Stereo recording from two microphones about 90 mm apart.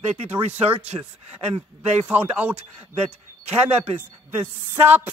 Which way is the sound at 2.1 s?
20° right (ahead or behind).